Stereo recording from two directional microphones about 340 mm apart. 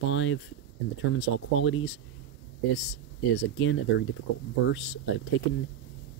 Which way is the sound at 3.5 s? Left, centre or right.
Left.